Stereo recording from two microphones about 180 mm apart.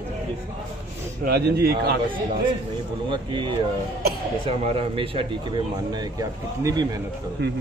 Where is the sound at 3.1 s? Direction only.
25° right (ahead or behind).